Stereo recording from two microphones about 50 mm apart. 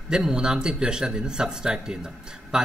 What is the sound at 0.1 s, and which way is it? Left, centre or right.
Speech, centre.